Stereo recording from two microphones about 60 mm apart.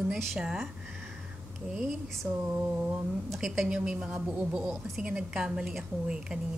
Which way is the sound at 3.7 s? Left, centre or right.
Centre.